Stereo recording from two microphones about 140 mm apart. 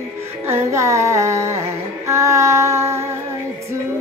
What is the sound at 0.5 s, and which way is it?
Music, 20° right (ahead or behind).